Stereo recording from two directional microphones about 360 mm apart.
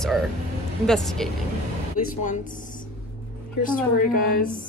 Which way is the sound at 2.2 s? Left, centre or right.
Left.